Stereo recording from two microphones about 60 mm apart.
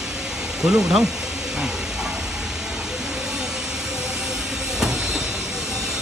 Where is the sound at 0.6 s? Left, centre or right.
Centre.